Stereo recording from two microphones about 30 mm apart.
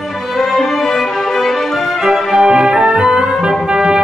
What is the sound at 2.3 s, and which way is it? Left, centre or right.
Music, right.